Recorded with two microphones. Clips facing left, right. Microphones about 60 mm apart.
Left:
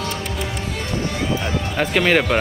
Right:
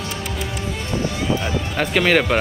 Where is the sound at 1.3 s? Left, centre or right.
Centre.